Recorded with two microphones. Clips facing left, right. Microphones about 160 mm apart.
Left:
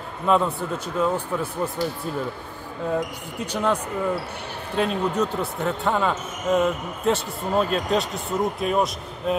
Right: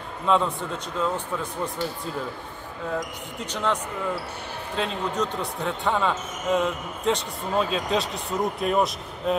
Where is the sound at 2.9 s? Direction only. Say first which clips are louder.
Left 3 dB; 10° left (ahead or behind).